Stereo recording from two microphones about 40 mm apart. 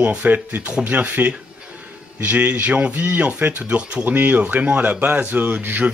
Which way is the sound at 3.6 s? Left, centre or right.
Right.